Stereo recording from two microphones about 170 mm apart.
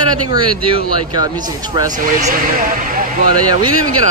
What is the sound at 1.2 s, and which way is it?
Speech, 25° right (ahead or behind).